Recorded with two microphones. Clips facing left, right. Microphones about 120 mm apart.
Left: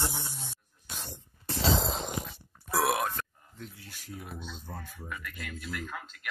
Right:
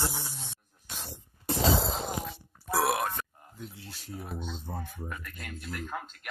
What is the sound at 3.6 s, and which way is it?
Speech, 30° right (ahead or behind).